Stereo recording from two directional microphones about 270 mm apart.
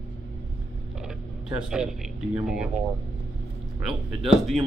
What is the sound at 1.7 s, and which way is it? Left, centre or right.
Speech, centre.